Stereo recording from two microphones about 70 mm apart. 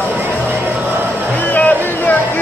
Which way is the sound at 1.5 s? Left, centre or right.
Left.